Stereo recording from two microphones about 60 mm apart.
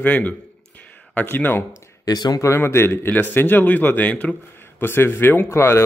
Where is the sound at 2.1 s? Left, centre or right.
Left.